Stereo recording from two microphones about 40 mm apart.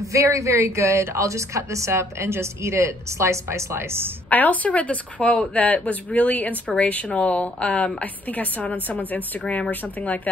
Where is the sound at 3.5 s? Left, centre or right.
Right.